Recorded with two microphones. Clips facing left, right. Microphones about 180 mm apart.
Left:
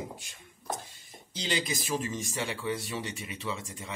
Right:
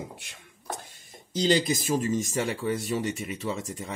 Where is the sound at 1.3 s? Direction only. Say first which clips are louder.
Right 9 dB; 45° right (ahead or behind).